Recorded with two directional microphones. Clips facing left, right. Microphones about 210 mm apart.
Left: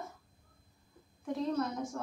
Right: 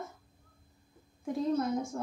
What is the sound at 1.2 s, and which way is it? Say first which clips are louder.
Speech: right 3 dB; 25° right (ahead or behind).